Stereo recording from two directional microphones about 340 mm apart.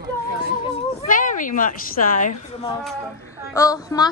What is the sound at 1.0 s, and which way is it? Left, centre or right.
A woman's voice, left.